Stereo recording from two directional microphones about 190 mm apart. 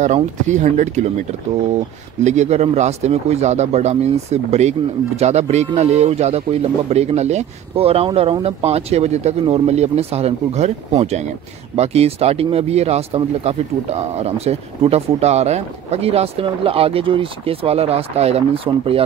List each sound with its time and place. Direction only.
0.0 s speech: 40° right (ahead or behind)
2.2 s speech: 35° right (ahead or behind)